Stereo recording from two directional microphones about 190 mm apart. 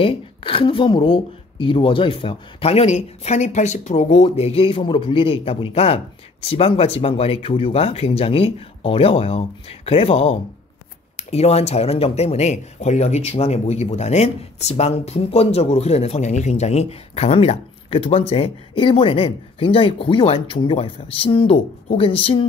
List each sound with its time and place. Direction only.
0.0 s speech: 30° left (ahead or behind)